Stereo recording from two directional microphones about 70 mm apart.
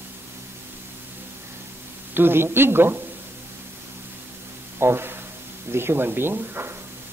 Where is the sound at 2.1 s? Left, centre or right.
Right.